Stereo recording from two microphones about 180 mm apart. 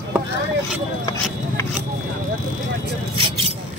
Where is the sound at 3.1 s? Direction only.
30° right (ahead or behind).